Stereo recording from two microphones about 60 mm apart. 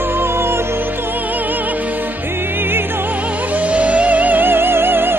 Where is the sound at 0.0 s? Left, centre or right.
Right.